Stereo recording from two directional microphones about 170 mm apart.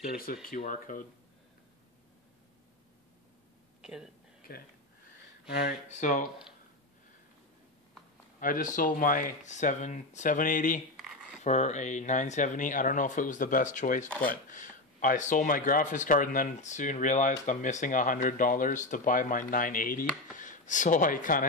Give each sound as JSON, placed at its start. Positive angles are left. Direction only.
{"t": 0.0, "sound": "speech", "side_deg": 60}
{"t": 3.8, "sound": "speech", "side_deg": -5}
{"t": 4.4, "sound": "a sound", "side_deg": 60}
{"t": 5.5, "sound": "speech", "side_deg": 65}
{"t": 5.9, "sound": "speech", "side_deg": 45}
{"t": 8.4, "sound": "speech", "side_deg": 55}